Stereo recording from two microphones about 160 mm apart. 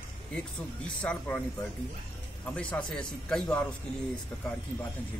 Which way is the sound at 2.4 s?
10° left (ahead or behind).